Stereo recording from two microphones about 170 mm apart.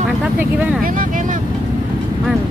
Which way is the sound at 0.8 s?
55° right (ahead or behind).